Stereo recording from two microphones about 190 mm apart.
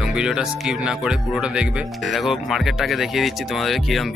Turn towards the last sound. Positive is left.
turn(degrees=0)  # may be behind; listen again after turning